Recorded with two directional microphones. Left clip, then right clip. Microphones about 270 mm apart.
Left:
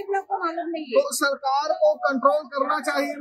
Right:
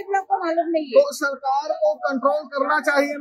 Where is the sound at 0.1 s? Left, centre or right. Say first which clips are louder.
Right 5 dB; centre.